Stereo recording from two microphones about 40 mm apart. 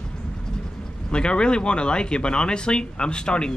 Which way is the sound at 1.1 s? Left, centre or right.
Left.